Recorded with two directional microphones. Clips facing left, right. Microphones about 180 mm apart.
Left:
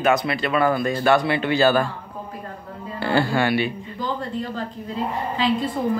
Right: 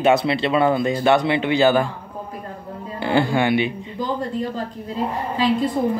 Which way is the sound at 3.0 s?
20° right (ahead or behind).